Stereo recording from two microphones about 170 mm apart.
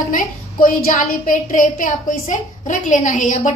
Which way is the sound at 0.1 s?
55° left (ahead or behind).